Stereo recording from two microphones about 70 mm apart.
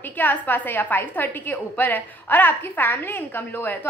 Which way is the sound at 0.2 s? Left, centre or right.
Left.